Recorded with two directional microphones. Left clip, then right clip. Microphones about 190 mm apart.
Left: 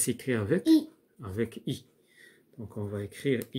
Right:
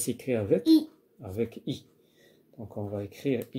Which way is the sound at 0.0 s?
50° left (ahead or behind).